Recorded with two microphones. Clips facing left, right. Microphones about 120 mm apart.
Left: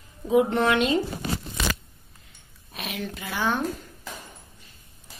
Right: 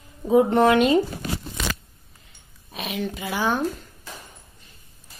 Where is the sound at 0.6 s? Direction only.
45° right (ahead or behind).